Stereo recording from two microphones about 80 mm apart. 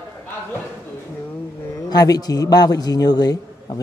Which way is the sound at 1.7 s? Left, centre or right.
Left.